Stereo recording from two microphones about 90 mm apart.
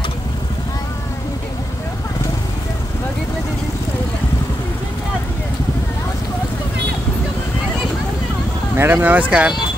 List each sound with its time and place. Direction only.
8.7 s speech: 20° right (ahead or behind)